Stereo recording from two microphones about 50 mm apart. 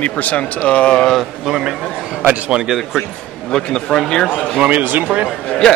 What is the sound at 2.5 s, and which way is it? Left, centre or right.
Speech, centre.